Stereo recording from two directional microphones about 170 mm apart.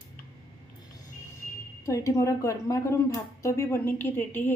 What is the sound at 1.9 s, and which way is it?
A woman's voice, 20° left (ahead or behind).